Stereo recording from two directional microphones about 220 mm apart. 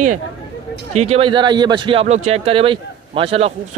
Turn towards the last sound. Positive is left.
turn(degrees=-25)  # may be behind; listen again after turning